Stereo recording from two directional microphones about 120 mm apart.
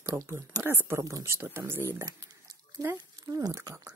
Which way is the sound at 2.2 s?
30° right (ahead or behind).